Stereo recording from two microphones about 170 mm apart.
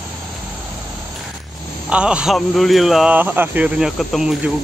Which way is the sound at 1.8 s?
5° right (ahead or behind).